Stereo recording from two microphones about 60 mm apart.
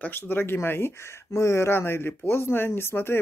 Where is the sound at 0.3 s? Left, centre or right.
Left.